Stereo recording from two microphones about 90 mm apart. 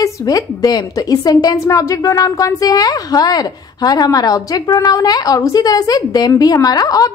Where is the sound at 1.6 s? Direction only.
35° left (ahead or behind).